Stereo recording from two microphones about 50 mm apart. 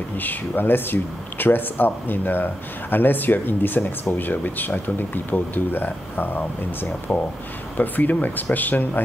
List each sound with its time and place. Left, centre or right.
0.2 s speech: left
7.1 s speech: left